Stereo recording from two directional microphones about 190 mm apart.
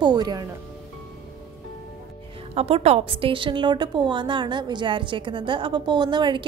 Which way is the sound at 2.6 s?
30° right (ahead or behind).